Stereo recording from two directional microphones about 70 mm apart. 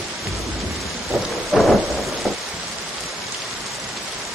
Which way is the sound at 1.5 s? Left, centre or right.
Centre.